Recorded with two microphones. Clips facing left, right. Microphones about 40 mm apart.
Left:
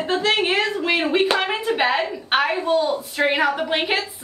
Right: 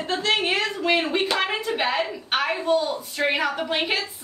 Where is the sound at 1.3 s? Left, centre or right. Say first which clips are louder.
Left 3 dB; centre.